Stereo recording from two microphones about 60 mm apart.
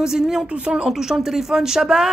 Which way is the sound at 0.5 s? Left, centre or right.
Centre.